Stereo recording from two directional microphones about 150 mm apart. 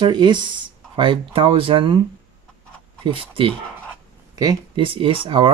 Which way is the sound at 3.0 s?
35° right (ahead or behind).